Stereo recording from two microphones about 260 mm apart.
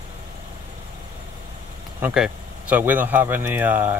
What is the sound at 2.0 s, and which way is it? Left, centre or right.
Speech, centre.